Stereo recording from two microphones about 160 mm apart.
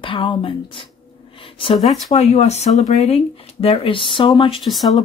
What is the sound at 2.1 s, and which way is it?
Speech, 45° left (ahead or behind).